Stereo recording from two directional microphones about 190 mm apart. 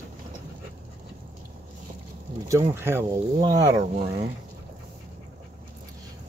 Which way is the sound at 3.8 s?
35° right (ahead or behind).